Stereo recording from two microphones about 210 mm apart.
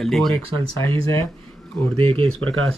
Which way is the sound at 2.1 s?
90° right.